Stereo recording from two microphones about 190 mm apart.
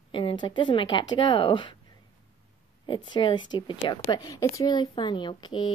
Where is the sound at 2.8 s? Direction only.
25° left (ahead or behind).